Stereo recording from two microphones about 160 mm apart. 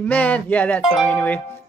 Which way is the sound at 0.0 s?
10° left (ahead or behind).